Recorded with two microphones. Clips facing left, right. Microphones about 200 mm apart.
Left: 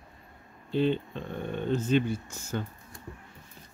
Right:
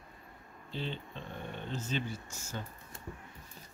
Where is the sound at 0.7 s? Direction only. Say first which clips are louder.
Left 13 dB; 55° left (ahead or behind).